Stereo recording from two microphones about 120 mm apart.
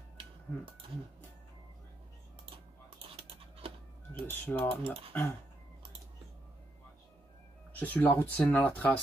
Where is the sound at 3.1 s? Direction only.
55° right (ahead or behind).